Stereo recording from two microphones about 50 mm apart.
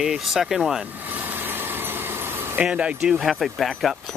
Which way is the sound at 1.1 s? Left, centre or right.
Right.